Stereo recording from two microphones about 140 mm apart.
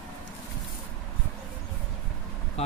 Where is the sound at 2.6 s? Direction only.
50° left (ahead or behind).